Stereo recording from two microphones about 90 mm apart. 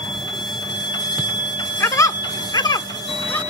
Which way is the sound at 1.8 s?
40° left (ahead or behind).